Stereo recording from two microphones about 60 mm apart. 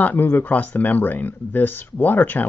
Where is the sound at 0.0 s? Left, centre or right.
Left.